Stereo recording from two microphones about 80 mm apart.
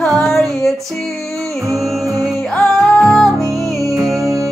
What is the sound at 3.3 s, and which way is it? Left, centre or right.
Music, right.